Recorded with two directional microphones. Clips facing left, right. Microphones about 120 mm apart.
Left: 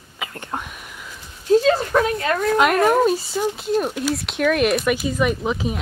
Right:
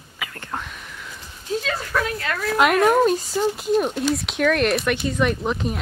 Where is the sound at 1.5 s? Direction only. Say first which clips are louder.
Left 10 dB; 35° left (ahead or behind).